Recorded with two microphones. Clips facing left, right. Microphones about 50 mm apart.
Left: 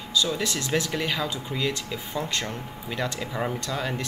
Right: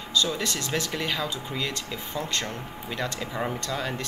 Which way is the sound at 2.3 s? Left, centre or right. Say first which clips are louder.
Even; centre.